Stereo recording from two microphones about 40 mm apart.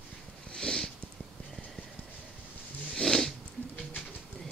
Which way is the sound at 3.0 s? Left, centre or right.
Centre.